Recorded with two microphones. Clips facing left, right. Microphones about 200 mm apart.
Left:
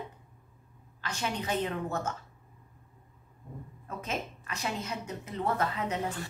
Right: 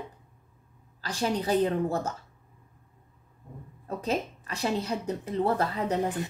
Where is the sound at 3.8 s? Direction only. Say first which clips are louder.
Right 7 dB; 35° right (ahead or behind).